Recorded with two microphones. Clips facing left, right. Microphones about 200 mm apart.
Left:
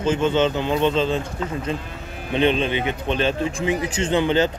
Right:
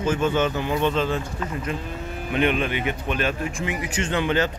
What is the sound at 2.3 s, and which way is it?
A man's voice, 25° left (ahead or behind).